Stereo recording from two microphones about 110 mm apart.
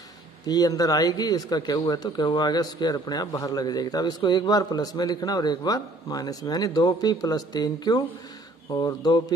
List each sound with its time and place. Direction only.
0.5 s speech: 35° left (ahead or behind)